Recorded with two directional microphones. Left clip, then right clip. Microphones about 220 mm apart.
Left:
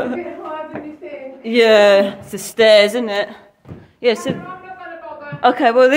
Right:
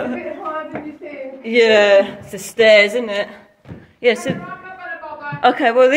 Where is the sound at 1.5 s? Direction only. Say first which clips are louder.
Left 1 dB; 25° left (ahead or behind).